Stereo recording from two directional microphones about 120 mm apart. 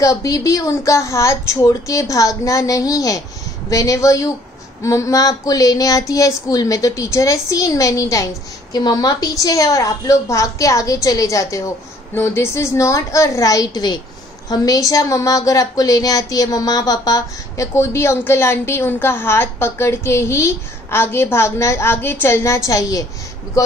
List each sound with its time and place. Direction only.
0.0 s a woman's voice: 30° left (ahead or behind)